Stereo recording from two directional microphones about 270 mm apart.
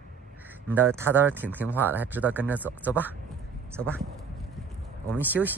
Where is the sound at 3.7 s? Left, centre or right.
Centre.